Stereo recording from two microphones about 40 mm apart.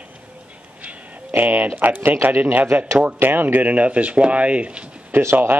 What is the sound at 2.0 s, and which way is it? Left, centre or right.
Speech, right.